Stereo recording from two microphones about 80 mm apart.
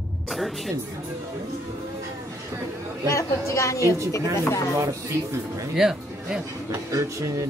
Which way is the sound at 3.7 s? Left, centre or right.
Right.